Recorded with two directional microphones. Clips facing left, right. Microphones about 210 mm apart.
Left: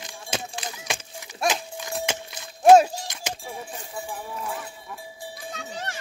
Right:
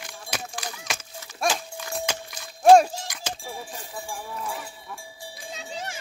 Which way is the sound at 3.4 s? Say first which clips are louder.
Left 1 dB; centre (ahead or behind).